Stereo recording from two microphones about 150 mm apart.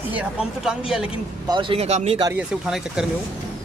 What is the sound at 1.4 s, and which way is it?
Speech, 30° right (ahead or behind).